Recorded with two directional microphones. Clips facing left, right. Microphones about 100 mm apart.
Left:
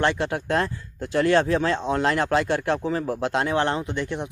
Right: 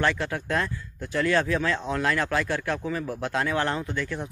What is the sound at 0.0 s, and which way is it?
Speech, 25° left (ahead or behind).